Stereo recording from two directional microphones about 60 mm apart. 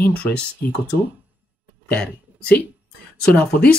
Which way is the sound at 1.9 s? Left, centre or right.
Centre.